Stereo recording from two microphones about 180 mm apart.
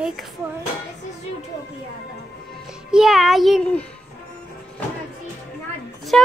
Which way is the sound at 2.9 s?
5° right (ahead or behind).